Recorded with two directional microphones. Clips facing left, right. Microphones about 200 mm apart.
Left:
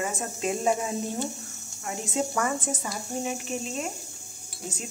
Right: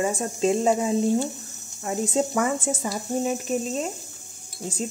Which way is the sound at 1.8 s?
35° right (ahead or behind).